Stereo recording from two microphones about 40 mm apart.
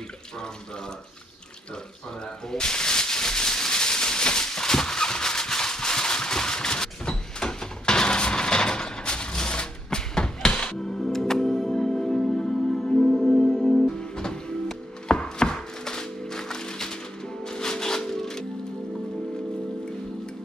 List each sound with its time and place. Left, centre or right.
2.5 s maraca: centre
10.7 s music: centre
13.1 s music: centre
13.8 s chopping: centre